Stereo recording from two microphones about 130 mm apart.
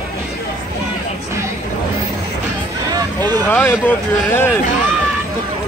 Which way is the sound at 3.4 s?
15° left (ahead or behind).